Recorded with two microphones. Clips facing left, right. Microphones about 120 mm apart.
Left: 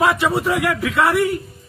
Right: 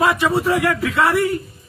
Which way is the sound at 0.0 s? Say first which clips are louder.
Even; 15° left (ahead or behind).